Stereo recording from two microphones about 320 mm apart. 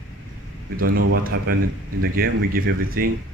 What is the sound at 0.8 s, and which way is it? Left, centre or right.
Speech, right.